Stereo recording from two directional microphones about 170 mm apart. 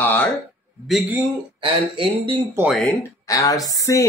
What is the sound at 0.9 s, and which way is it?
Speech, 10° right (ahead or behind).